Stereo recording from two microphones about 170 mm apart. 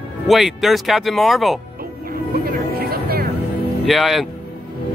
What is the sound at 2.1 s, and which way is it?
Music, 60° right (ahead or behind).